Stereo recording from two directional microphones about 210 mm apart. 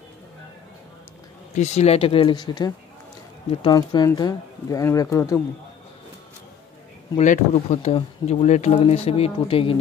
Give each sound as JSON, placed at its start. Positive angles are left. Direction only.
{"t": 1.5, "sound": "speech", "side_deg": 30}
{"t": 7.2, "sound": "speech", "side_deg": 30}